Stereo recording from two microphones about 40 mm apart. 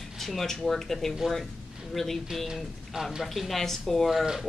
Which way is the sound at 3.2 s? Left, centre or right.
Centre.